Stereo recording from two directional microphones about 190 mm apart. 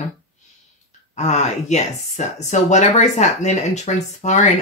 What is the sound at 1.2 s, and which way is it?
Speech, 35° left (ahead or behind).